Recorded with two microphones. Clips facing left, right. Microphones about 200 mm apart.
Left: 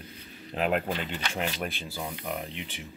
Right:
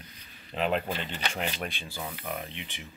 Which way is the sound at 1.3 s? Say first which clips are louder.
Left 4 dB; centre (ahead or behind).